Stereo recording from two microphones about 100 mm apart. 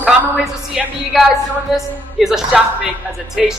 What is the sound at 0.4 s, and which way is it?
A woman's voice, centre (ahead or behind).